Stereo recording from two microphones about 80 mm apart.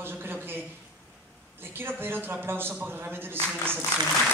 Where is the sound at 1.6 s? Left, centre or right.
Right.